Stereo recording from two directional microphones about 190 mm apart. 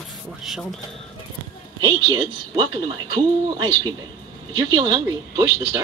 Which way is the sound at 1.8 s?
25° right (ahead or behind).